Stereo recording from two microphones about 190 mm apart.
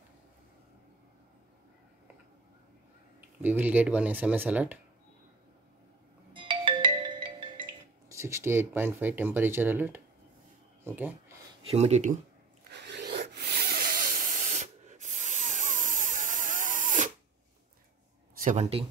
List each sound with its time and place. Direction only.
3.2 s speech: 10° right (ahead or behind)
6.3 s music: 25° right (ahead or behind)
8.1 s speech: 15° right (ahead or behind)
10.8 s a sound: 10° right (ahead or behind)
11.6 s speech: 35° right (ahead or behind)
12.7 s rub: 65° right (ahead or behind); by 17.1 s 40° right (ahead or behind)
18.4 s speech: 35° right (ahead or behind)